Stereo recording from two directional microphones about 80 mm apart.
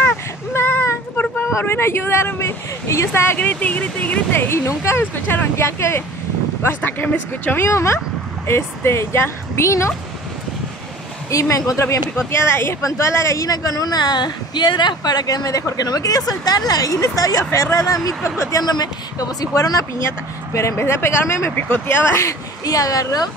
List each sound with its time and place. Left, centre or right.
0.5 s a sound: left
1.5 s speech: left
3.3 s speech: centre
4.5 s speech: left
7.6 s speech: left
11.2 s a woman's voice: left
17.7 s a woman's voice: left
20.5 s speech: left
21.5 s speech: left
22.7 s a woman's voice: left